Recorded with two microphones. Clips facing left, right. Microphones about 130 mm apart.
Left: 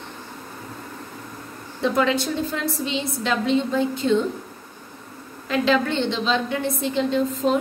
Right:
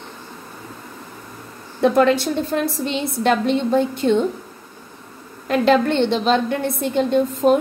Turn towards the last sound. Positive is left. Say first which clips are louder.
# right 5 dB
turn(degrees=-60)  # may be behind; listen again after turning